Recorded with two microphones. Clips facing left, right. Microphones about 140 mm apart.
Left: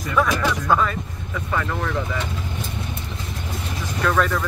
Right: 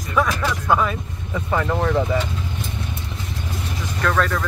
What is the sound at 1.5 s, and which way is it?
Vehicle, 35° right (ahead or behind).